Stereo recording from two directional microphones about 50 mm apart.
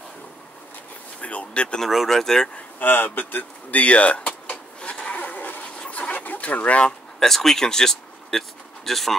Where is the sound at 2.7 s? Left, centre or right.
Left.